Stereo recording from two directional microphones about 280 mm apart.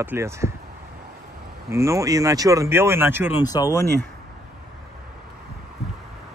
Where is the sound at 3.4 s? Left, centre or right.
Centre.